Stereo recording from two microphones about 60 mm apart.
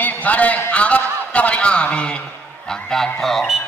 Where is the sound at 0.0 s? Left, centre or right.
Left.